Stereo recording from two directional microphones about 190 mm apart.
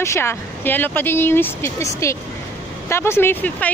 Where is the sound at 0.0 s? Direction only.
15° left (ahead or behind).